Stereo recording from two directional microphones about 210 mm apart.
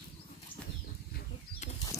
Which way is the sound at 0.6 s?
5° left (ahead or behind).